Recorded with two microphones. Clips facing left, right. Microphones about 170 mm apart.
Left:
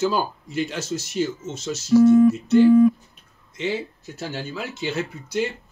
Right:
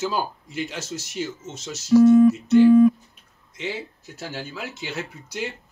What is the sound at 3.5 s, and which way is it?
Speech, 10° right (ahead or behind).